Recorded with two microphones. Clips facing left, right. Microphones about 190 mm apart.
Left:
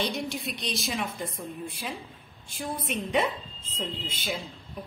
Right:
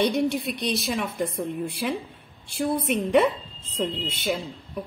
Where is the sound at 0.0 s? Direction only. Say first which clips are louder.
Right 8 dB; 60° right (ahead or behind).